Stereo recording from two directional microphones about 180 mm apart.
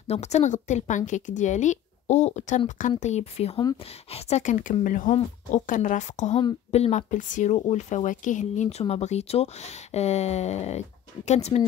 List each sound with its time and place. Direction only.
0.0 s a woman's voice: 35° left (ahead or behind)